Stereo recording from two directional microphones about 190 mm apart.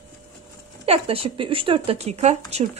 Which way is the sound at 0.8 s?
30° right (ahead or behind).